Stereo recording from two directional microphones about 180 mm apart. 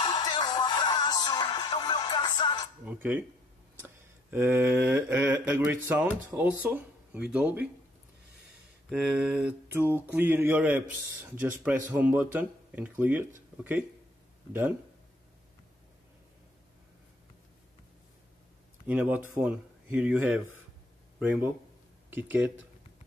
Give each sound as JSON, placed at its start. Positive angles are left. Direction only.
{"t": 0.0, "sound": "music", "side_deg": 25}
{"t": 2.8, "sound": "speech", "side_deg": -10}
{"t": 3.8, "sound": "a sound", "side_deg": -15}
{"t": 6.3, "sound": "speech", "side_deg": -10}
{"t": 8.8, "sound": "speech", "side_deg": -5}
{"t": 14.5, "sound": "speech", "side_deg": -10}
{"t": 18.9, "sound": "a man's voice", "side_deg": -10}